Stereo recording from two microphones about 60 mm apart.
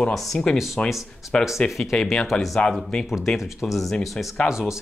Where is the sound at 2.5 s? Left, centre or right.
Centre.